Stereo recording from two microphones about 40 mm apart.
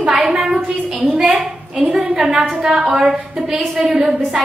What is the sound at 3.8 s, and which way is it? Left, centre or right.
Speech, centre.